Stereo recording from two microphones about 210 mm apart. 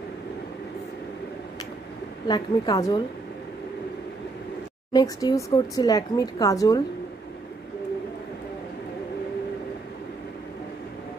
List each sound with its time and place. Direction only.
2.2 s a woman's voice: 20° left (ahead or behind)
4.9 s speech: 15° left (ahead or behind)